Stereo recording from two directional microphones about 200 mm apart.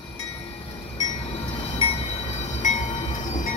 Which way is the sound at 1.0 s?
25° left (ahead or behind).